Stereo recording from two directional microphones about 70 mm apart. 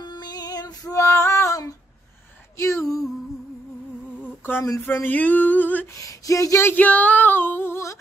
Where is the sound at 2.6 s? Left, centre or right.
Left.